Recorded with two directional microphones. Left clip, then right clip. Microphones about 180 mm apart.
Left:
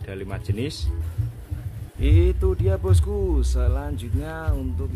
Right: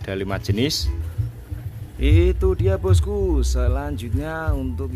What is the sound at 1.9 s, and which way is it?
Speech, 5° right (ahead or behind).